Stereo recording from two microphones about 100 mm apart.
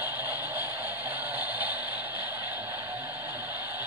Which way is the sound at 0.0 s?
20° right (ahead or behind).